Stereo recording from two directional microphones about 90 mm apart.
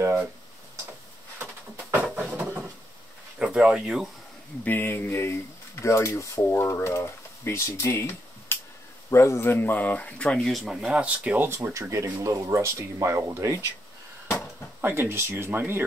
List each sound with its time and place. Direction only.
0.0 s a sound: 35° right (ahead or behind)
1.4 s a sound: 20° right (ahead or behind)
3.3 s speech: 10° right (ahead or behind)
4.6 s speech: 20° left (ahead or behind)
4.9 s speech: 30° left (ahead or behind); by 11.3 s 10° right (ahead or behind)
11.3 s speech: 30° right (ahead or behind)
14.8 s speech: 25° right (ahead or behind)